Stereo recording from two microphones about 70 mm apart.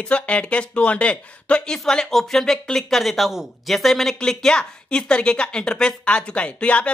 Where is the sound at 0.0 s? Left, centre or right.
Centre.